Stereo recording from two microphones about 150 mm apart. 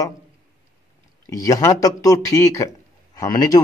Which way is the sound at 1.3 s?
20° left (ahead or behind).